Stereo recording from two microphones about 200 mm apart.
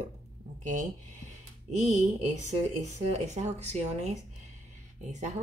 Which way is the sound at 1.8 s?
35° right (ahead or behind).